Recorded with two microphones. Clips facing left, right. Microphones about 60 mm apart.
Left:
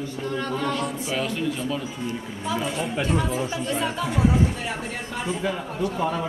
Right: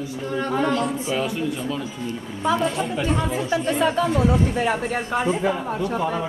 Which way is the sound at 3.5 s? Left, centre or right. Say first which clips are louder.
Right 6 dB; right.